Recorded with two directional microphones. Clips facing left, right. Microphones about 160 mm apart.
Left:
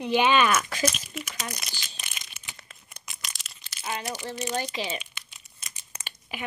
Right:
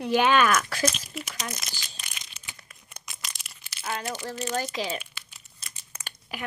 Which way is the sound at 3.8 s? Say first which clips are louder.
Right 1 dB; 15° left (ahead or behind).